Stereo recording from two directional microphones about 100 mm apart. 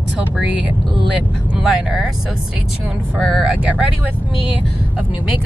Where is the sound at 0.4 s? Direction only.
10° right (ahead or behind).